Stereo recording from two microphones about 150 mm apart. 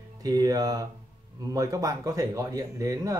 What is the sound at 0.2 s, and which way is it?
Speech, 25° right (ahead or behind).